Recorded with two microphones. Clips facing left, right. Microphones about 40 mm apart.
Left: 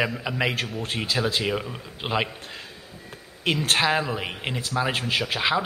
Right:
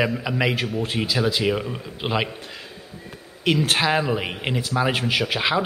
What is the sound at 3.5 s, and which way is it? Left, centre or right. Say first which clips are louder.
Speech: right 3 dB; right.